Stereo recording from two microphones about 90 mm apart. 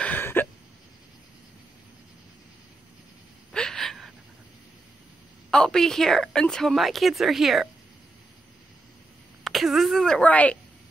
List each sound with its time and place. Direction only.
0.0 s a sound: 20° left (ahead or behind)
3.5 s gasp: 5° left (ahead or behind)
5.5 s a woman's voice: 5° left (ahead or behind)
9.4 s a woman's voice: centre (ahead or behind); by 10.6 s 15° left (ahead or behind)